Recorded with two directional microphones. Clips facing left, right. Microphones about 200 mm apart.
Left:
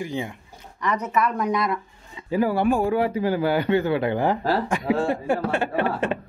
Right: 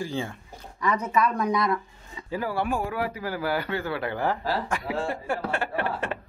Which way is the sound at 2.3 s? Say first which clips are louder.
Left 7 dB; 15° left (ahead or behind).